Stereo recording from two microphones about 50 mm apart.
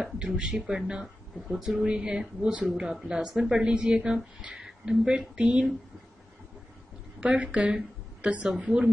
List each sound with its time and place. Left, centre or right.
0.0 s speech: centre
7.2 s a woman's voice: right